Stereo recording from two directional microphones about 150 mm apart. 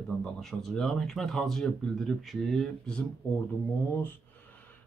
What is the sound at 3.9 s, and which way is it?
Speech, 15° left (ahead or behind).